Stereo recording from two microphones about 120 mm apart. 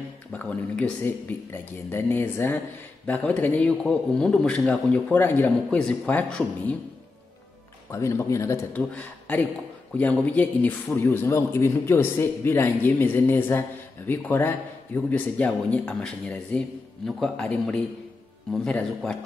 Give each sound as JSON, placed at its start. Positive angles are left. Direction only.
{"t": 0.3, "sound": "speech", "side_deg": 10}
{"t": 7.9, "sound": "speech", "side_deg": 25}
{"t": 8.7, "sound": "a man's voice", "side_deg": 15}